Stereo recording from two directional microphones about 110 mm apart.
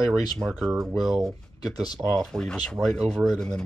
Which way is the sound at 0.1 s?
Centre (ahead or behind).